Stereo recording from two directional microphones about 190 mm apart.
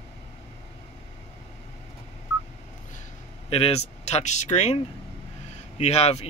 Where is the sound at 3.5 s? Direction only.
30° left (ahead or behind).